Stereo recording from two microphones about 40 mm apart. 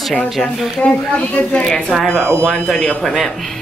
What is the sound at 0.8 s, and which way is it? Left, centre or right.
Speech, left.